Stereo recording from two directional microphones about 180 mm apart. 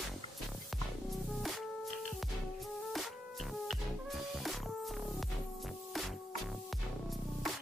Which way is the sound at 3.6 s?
Centre (ahead or behind).